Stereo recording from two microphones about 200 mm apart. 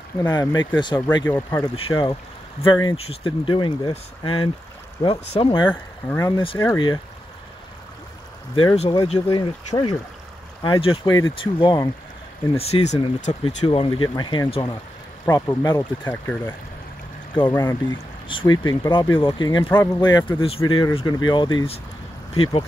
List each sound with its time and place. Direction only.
0.2 s speech: 15° left (ahead or behind)
1.8 s speech: 25° left (ahead or behind)
5.7 s speech: 10° left (ahead or behind)
8.5 s speech: 30° left (ahead or behind); by 16.5 s 10° left (ahead or behind)
17.3 s speech: 25° left (ahead or behind)